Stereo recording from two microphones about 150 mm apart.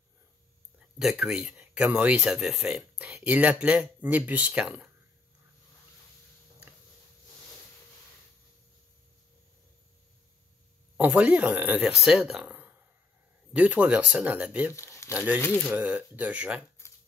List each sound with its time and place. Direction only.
0.9 s speech: 5° right (ahead or behind)
11.0 s speech: 10° right (ahead or behind)
14.8 s crumpling: 20° left (ahead or behind)
15.1 s speech: 10° right (ahead or behind)